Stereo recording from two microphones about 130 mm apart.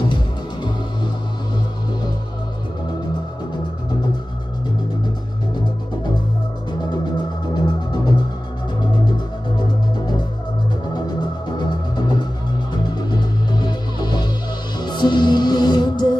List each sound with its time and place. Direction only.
6.7 s music: 35° left (ahead or behind)
9.6 s music: 35° left (ahead or behind)